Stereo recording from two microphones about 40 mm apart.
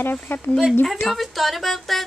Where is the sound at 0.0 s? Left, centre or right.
Left.